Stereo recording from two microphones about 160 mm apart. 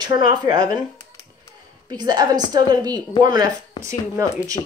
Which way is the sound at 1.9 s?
25° right (ahead or behind).